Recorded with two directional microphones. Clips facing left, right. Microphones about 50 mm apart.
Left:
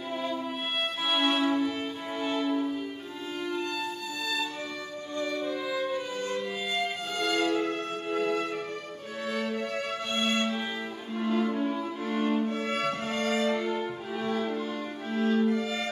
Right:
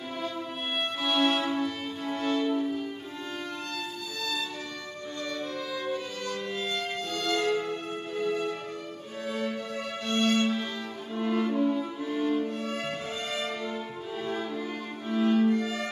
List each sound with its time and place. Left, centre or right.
0.1 s music: centre
1.0 s violin: centre
3.3 s music: centre
6.5 s violin: centre
7.5 s violin: left
10.0 s violin: centre
11.7 s music: left